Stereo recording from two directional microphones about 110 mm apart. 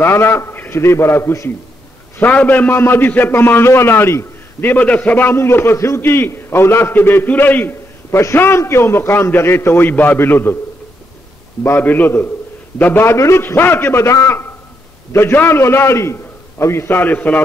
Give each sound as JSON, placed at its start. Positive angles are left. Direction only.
{"t": 0.0, "sound": "a man's voice", "side_deg": 25}
{"t": 11.6, "sound": "a man's voice", "side_deg": 20}